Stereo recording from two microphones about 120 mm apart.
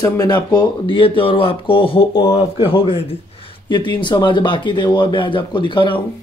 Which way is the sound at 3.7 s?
40° left (ahead or behind).